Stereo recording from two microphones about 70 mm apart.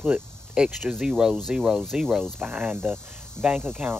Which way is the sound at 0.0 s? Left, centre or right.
Centre.